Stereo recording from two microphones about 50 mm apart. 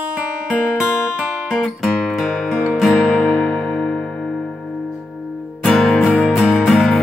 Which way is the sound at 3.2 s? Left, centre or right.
Left.